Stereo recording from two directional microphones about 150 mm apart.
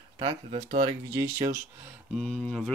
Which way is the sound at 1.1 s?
20° right (ahead or behind).